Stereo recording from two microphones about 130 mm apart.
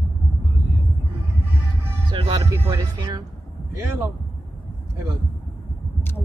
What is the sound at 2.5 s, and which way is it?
Speech, 20° right (ahead or behind).